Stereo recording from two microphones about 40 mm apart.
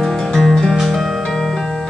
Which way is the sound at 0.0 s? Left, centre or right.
Centre.